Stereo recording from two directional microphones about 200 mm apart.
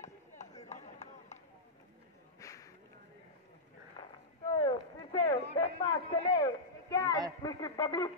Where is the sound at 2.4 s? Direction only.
15° left (ahead or behind).